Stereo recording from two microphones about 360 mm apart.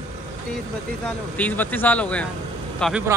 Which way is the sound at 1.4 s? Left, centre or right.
Centre.